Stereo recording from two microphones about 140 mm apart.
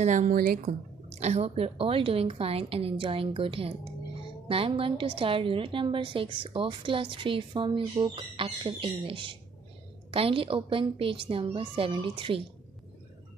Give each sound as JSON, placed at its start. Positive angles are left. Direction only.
{"t": 0.0, "sound": "a woman's voice", "side_deg": -60}
{"t": 1.0, "sound": "a woman's voice", "side_deg": -50}